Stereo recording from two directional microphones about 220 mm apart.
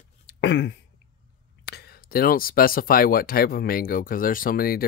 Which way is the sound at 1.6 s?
50° left (ahead or behind).